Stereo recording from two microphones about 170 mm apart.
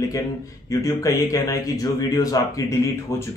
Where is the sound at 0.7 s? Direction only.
20° left (ahead or behind).